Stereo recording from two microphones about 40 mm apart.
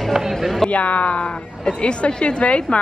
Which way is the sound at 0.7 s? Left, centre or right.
Left.